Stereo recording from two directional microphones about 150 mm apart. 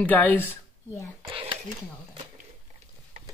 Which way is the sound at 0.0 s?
10° left (ahead or behind).